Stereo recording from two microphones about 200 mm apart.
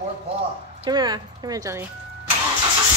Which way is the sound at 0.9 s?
20° right (ahead or behind).